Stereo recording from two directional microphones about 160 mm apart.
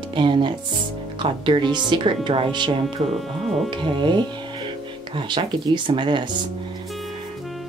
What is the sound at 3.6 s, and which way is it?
Speech, 30° right (ahead or behind).